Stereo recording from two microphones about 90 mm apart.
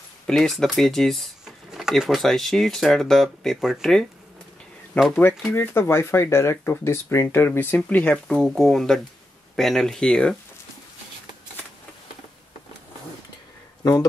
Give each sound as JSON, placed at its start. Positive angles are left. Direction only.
{"t": 0.3, "sound": "speech", "side_deg": 5}
{"t": 5.5, "sound": "speech", "side_deg": 25}
{"t": 8.1, "sound": "speech", "side_deg": 5}